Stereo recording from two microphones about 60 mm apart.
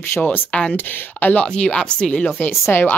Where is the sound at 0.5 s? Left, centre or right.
Centre.